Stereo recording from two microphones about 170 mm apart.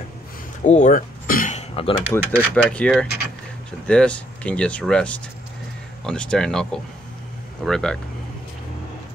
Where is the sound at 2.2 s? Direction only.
10° right (ahead or behind).